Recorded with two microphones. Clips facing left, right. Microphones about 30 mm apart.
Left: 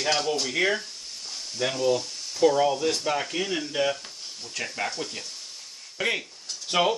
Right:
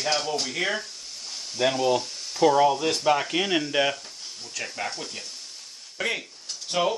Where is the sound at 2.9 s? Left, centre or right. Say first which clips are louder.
Right 4 dB; right.